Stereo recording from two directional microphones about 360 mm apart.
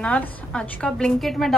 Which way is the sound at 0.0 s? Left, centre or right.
Centre.